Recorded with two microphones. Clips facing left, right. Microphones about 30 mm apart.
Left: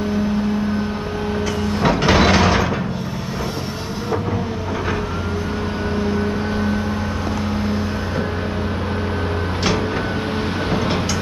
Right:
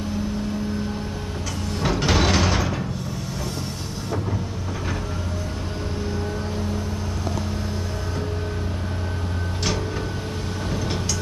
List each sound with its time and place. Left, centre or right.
1.7 s sliding door: centre